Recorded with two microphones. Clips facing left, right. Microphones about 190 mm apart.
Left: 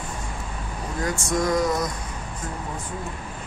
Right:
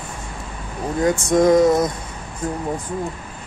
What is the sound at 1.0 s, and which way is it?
Speech, 20° right (ahead or behind).